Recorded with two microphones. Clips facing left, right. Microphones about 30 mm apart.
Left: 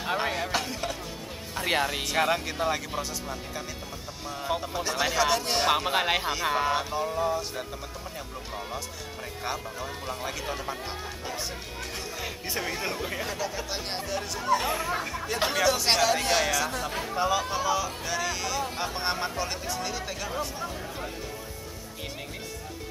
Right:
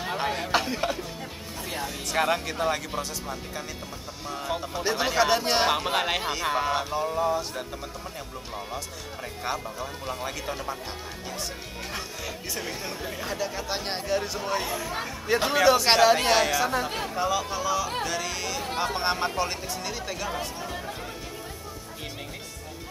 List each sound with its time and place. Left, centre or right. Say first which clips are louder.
0.0 s a sound: even; centre
0.5 s speech: right 4 dB; centre
1.6 s speech: left 7 dB; left
2.0 s speech: right 1 dB; centre
4.9 s speech: right 2 dB; centre
5.7 s speech: left 1 dB; centre
9.4 s speech: right 2 dB; centre
13.2 s speech: right 1 dB; centre
14.7 s speech: left 3 dB; left
15.5 s speech: right 5 dB; centre
17.1 s speech: left 3 dB; centre
18.0 s music: even; centre
18.9 s speech: right 2 dB; centre
20.2 s speech: even; centre